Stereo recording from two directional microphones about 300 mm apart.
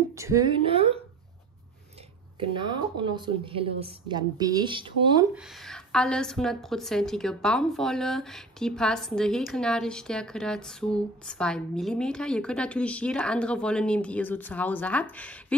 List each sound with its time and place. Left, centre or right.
0.1 s a woman's voice: centre
2.5 s a woman's voice: centre
5.3 s a woman's voice: centre